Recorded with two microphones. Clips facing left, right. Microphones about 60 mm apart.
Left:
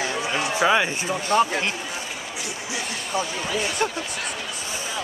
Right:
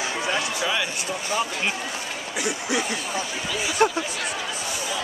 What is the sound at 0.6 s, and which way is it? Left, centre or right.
Speech, left.